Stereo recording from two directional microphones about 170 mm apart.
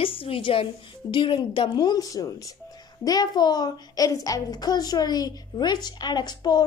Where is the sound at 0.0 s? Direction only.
30° left (ahead or behind).